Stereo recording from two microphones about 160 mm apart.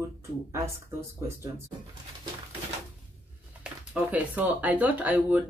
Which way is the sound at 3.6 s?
10° right (ahead or behind).